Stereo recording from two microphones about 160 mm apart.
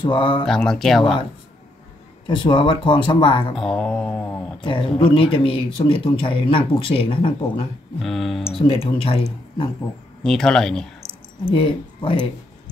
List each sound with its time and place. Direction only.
0.0 s speech: 30° left (ahead or behind)
0.5 s a man's voice: 5° left (ahead or behind)
2.2 s speech: 30° left (ahead or behind)
3.5 s mantra: 5° left (ahead or behind)
4.3 s speech: 30° left (ahead or behind)
8.0 s a man's voice: centre (ahead or behind)
8.5 s speech: 35° left (ahead or behind)
10.2 s a man's voice: 5° left (ahead or behind)
11.5 s speech: 35° left (ahead or behind)